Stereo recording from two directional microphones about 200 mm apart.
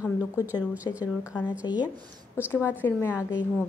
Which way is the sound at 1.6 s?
20° left (ahead or behind).